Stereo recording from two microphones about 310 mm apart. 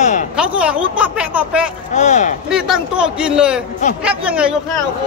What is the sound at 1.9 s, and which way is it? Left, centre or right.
Speech, left.